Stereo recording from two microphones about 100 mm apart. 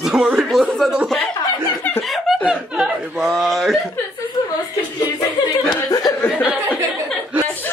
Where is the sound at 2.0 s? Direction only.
Centre (ahead or behind).